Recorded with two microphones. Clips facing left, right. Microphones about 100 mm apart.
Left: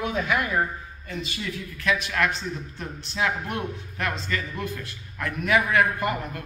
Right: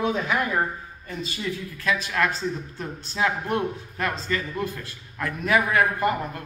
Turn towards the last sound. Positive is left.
turn(degrees=-30)  # may be behind; listen again after turning